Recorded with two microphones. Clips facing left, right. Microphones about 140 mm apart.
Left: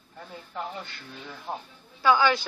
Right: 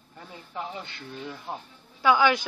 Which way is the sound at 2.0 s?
15° right (ahead or behind).